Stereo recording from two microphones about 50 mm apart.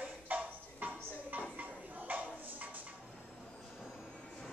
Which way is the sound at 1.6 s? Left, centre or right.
Right.